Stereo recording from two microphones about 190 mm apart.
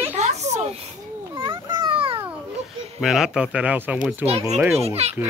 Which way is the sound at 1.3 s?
20° right (ahead or behind).